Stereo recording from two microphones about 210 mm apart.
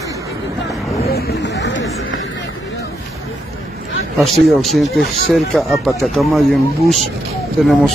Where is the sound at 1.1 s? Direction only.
45° left (ahead or behind).